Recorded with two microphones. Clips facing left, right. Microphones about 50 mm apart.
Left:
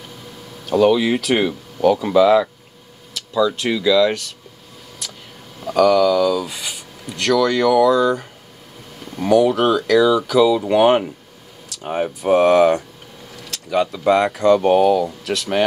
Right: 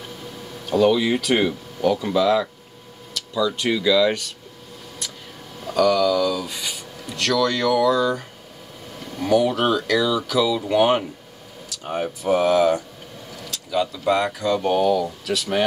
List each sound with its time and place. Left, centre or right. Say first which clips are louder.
0.7 s speech: left 3 dB; centre
5.8 s speech: left 4 dB; centre
7.2 s speech: left 4 dB; left
9.3 s speech: left 4 dB; centre
10.0 s speech: left 6 dB; centre
12.3 s speech: left 5 dB; left
14.6 s speech: left 5 dB; left